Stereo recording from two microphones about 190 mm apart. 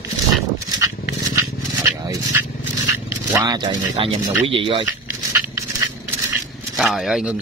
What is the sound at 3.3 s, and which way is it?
Speech, 20° right (ahead or behind).